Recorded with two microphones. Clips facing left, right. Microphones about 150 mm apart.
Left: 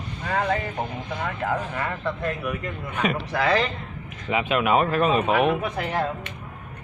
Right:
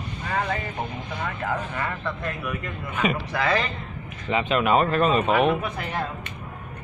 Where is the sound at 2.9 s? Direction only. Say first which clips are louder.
Right 1 dB; 5° right (ahead or behind).